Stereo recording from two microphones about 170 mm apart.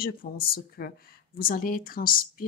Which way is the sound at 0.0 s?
60° left (ahead or behind).